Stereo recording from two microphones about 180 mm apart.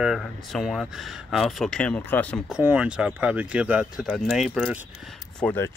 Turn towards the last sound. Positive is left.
turn(degrees=10)  # may be behind; listen again after turning